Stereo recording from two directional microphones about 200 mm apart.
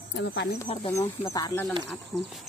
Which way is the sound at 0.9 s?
15° left (ahead or behind).